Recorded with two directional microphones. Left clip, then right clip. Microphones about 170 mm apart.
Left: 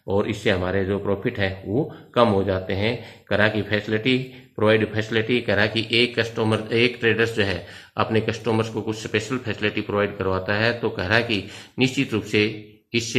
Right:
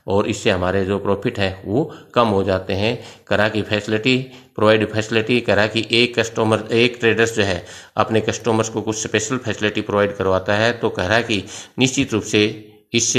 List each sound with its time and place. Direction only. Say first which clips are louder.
0.1 s speech: right 4 dB; 40° right (ahead or behind)